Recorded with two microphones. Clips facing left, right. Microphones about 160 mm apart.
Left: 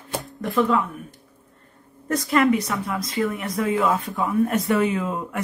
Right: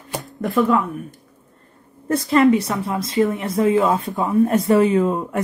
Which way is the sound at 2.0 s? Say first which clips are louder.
Right 4 dB; 30° right (ahead or behind).